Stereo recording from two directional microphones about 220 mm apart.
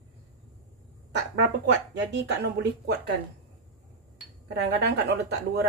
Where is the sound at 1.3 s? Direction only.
55° right (ahead or behind).